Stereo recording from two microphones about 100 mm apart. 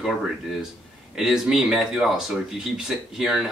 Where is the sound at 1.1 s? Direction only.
5° right (ahead or behind).